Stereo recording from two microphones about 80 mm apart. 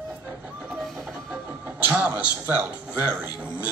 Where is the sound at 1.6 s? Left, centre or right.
Right.